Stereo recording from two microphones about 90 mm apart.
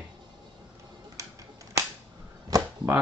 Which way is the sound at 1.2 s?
35° right (ahead or behind).